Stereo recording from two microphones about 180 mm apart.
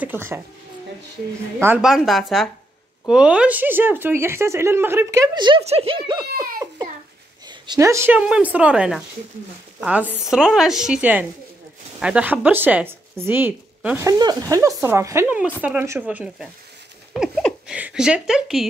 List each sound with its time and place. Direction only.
0.0 s speech: 10° right (ahead or behind)
1.6 s a woman's voice: 5° right (ahead or behind)
5.4 s speech: 25° right (ahead or behind)
7.4 s a woman's voice: 25° right (ahead or behind)
17.1 s a sound: centre (ahead or behind)
17.7 s speech: 5° right (ahead or behind)